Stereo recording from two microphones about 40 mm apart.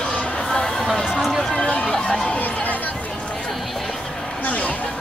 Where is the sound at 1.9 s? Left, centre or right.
Centre.